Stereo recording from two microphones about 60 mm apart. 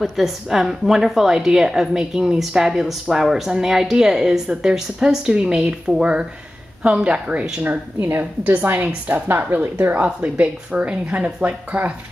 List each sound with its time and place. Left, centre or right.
0.0 s a woman's voice: centre; by 11.9 s right